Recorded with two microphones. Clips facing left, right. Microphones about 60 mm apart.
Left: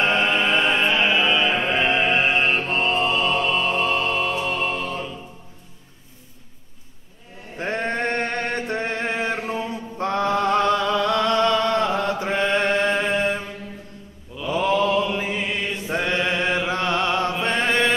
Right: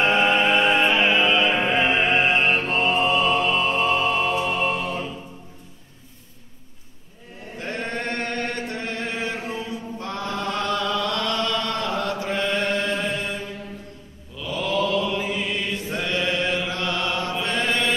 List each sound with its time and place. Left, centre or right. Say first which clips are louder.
0.0 s music: right 1 dB; centre
7.5 s chant: left 4 dB; left
10.6 s chant: left 4 dB; left
14.3 s mantra: left 4 dB; left